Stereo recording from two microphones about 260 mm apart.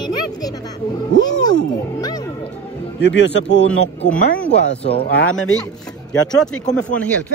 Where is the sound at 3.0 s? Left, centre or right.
Left.